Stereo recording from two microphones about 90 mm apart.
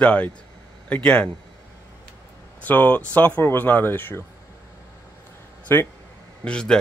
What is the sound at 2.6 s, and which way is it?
Speech, 20° left (ahead or behind).